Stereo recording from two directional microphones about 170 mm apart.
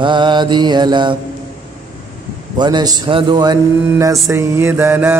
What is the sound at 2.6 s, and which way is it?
Mantra, 25° right (ahead or behind).